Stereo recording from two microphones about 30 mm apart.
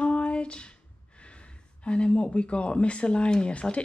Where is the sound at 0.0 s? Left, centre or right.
Left.